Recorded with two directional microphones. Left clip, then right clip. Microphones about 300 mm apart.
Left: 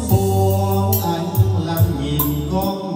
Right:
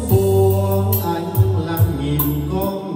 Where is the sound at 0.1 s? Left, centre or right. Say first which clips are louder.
Right 3 dB; centre.